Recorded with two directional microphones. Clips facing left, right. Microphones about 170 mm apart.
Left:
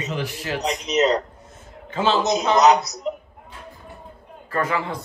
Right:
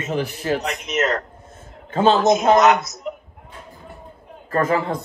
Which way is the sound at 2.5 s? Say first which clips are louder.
Right 4 dB; 45° right (ahead or behind).